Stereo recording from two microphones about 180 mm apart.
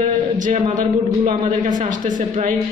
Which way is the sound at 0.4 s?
45° right (ahead or behind).